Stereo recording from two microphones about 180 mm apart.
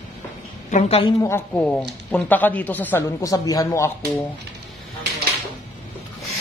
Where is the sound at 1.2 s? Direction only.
10° left (ahead or behind).